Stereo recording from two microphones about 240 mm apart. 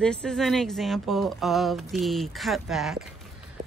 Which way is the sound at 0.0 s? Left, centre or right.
Centre.